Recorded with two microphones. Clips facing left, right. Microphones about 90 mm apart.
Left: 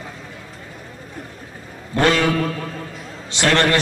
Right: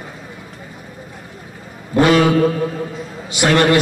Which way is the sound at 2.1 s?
20° right (ahead or behind).